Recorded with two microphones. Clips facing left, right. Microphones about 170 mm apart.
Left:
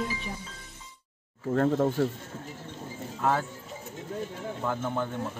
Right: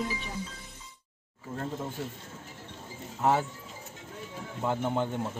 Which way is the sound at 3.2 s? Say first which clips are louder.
Right 1 dB; 20° right (ahead or behind).